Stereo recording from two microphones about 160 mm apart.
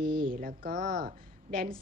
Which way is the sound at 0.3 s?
65° right (ahead or behind).